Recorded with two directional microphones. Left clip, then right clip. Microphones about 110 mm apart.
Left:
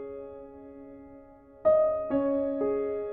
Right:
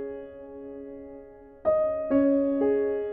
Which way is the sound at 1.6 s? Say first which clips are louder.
Left 1 dB; 35° left (ahead or behind).